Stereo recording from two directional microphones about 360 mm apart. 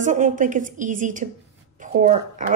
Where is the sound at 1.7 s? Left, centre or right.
Right.